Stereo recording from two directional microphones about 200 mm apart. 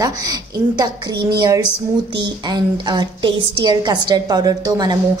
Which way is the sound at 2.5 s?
20° right (ahead or behind).